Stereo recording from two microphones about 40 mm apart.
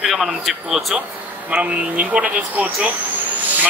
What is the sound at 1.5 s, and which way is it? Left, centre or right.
Speech, right.